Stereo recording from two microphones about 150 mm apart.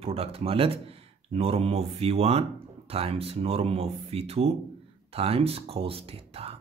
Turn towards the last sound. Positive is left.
turn(degrees=-40)  # may be behind; listen again after turning